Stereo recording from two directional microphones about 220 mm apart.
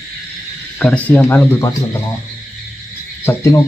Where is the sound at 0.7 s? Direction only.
5° left (ahead or behind).